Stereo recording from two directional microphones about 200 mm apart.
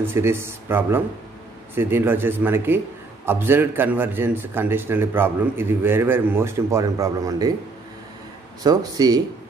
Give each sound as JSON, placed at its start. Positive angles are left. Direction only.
{"t": 0.0, "sound": "a man's voice", "side_deg": -10}
{"t": 8.6, "sound": "speech", "side_deg": -20}